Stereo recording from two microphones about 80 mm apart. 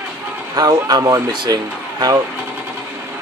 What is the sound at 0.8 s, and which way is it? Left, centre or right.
Speech, right.